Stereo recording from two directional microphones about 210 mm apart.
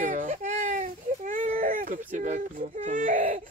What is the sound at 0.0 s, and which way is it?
Baby cry, 35° right (ahead or behind).